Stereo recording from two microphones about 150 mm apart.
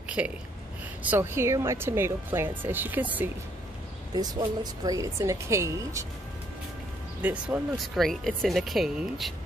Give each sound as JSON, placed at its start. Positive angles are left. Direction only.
{"t": 0.2, "sound": "speech", "side_deg": -10}
{"t": 4.1, "sound": "a woman's voice", "side_deg": -25}
{"t": 7.2, "sound": "speech", "side_deg": -10}
{"t": 7.7, "sound": "speech", "side_deg": 0}